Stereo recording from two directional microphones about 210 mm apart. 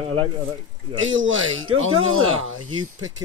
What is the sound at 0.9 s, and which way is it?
Speech, 65° right (ahead or behind).